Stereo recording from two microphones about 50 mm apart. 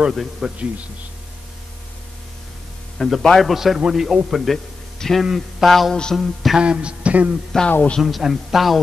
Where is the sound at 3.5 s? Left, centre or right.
Centre.